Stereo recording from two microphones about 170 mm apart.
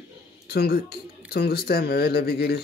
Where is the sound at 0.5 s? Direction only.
70° left (ahead or behind).